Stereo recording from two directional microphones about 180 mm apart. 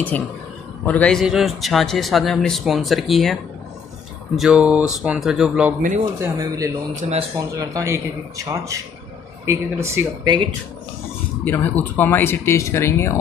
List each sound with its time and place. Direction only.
0.8 s a man's voice: 5° left (ahead or behind)
4.4 s a man's voice: 5° right (ahead or behind)
6.1 s speech: 15° right (ahead or behind)
7.0 s speech: 40° right (ahead or behind)
7.3 s speech: 20° right (ahead or behind)
11.4 s speech: 10° left (ahead or behind)